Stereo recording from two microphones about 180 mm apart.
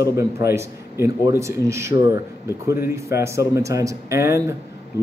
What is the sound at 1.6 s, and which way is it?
Speech, 15° right (ahead or behind).